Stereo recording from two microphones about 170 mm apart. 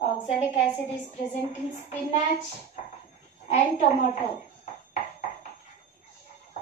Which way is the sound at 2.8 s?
45° left (ahead or behind).